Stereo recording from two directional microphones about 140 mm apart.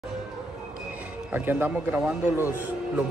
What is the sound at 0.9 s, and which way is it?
Speech, 15° right (ahead or behind).